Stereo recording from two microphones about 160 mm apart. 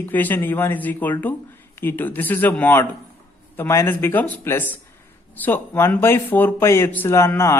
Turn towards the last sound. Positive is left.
turn(degrees=15)  # may be behind; listen again after turning